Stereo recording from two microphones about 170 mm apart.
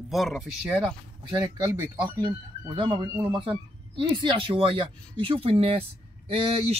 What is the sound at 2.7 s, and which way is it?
Speech, 30° right (ahead or behind).